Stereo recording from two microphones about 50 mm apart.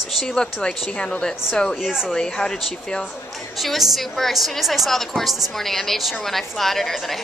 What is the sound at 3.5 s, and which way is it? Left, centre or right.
A woman's voice, centre.